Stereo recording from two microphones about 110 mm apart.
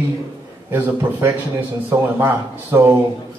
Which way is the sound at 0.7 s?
20° right (ahead or behind).